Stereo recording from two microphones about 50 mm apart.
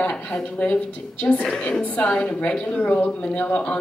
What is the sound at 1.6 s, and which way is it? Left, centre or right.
A woman's voice, left.